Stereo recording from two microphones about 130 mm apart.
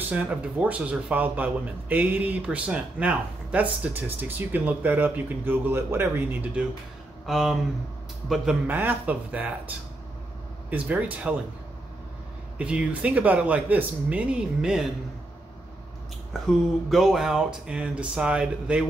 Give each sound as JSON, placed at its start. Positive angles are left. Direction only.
{"t": 0.1, "sound": "speech", "side_deg": -10}
{"t": 7.2, "sound": "speech", "side_deg": 0}
{"t": 8.6, "sound": "speech", "side_deg": -15}
{"t": 12.5, "sound": "speech", "side_deg": -10}
{"t": 16.4, "sound": "speech", "side_deg": 0}